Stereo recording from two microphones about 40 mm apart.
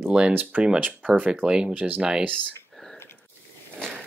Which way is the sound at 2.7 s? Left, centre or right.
Centre.